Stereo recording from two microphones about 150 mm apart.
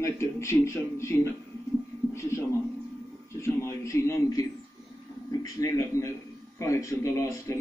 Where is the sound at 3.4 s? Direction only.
20° left (ahead or behind).